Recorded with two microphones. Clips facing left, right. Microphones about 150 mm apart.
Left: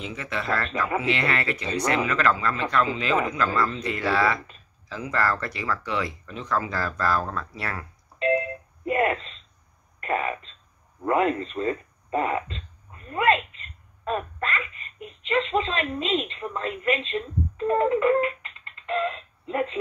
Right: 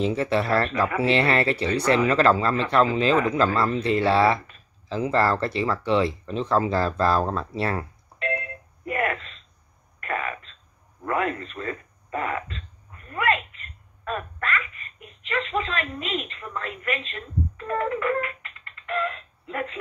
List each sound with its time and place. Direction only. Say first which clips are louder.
0.0 s speech: right 9 dB; 35° right (ahead or behind)
8.8 s a sound: left 3 dB; 25° left (ahead or behind)
9.9 s throat clearing: left 3 dB; 25° left (ahead or behind)
11.1 s speech: left 4 dB; 25° left (ahead or behind)
14.0 s a sound: left 2 dB; 25° left (ahead or behind)
15.2 s a woman's voice: left 3 dB; 25° left (ahead or behind)